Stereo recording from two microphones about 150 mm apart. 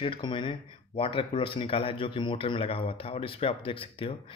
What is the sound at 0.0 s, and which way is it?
Speech, 35° left (ahead or behind).